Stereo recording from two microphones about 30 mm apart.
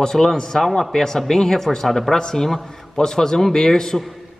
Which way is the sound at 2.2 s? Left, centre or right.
Left.